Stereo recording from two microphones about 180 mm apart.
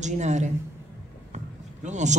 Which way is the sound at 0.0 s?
40° right (ahead or behind).